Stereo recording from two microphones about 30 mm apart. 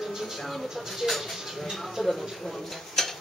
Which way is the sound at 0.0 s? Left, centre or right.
Centre.